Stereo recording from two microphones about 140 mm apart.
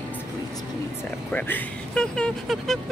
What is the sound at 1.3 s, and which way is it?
Speech, 10° left (ahead or behind).